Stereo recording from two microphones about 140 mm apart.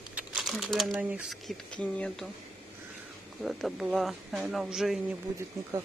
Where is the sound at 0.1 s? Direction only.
5° right (ahead or behind).